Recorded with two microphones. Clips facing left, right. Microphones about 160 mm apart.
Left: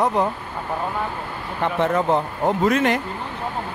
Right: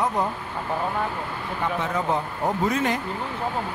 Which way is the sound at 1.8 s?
65° left (ahead or behind).